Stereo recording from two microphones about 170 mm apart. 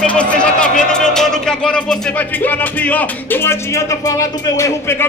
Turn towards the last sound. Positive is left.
turn(degrees=15)  # may be behind; listen again after turning